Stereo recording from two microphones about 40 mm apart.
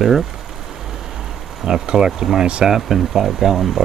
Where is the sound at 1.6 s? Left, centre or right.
Centre.